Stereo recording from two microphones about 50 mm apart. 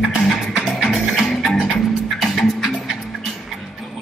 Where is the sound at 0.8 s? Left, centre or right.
Centre.